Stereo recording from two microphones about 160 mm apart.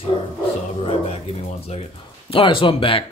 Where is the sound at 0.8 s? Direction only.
40° left (ahead or behind).